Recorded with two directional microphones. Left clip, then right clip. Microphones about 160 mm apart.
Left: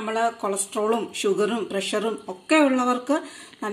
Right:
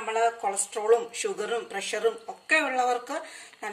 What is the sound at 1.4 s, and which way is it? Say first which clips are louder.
A woman's voice: left 6 dB; 35° left (ahead or behind).